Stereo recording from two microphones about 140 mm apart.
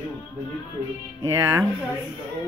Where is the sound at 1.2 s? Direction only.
25° right (ahead or behind).